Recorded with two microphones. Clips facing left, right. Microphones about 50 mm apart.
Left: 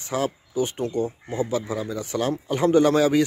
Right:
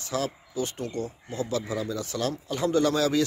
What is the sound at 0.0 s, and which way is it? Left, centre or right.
A man's voice, left.